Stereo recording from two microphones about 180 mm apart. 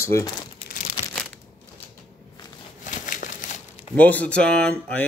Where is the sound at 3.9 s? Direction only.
10° left (ahead or behind).